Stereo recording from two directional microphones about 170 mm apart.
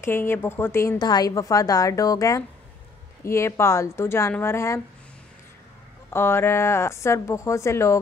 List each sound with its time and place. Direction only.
0.0 s a woman's voice: 15° left (ahead or behind)
6.0 s speech: 15° left (ahead or behind)